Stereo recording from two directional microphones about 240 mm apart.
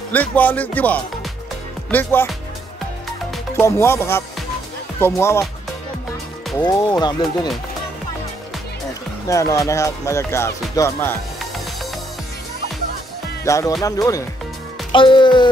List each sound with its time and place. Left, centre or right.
0.1 s speech: centre
3.5 s speech: centre
6.6 s speech: centre
9.3 s speech: centre
13.4 s music: centre
13.8 s speech: centre
14.9 s music: centre